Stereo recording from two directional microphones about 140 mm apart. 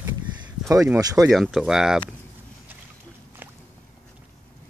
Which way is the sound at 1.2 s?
Centre (ahead or behind).